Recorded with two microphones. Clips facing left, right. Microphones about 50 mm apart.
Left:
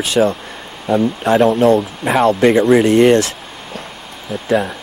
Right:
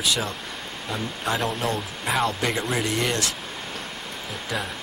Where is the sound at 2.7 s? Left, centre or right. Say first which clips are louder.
Left 15 dB; left.